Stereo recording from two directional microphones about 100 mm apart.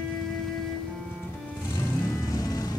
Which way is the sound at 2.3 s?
35° left (ahead or behind).